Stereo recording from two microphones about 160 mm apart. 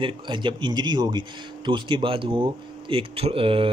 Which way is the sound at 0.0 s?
30° right (ahead or behind).